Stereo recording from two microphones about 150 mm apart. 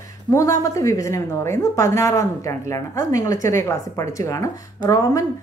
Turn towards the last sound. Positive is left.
turn(degrees=20)  # may be behind; listen again after turning